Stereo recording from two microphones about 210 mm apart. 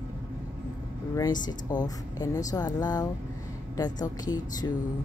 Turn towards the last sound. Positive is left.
turn(degrees=20)  # may be behind; listen again after turning